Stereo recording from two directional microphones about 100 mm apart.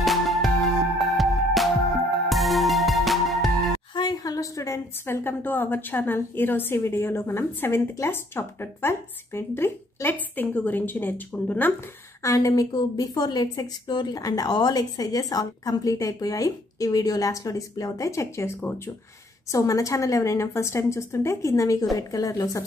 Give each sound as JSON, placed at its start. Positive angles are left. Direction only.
{"t": 0.0, "sound": "music", "side_deg": 0}
{"t": 3.9, "sound": "a woman's voice", "side_deg": 45}
{"t": 12.2, "sound": "a woman's voice", "side_deg": 35}